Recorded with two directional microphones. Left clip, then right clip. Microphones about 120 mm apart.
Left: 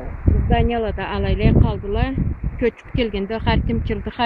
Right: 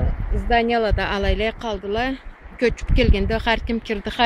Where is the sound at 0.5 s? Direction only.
15° right (ahead or behind).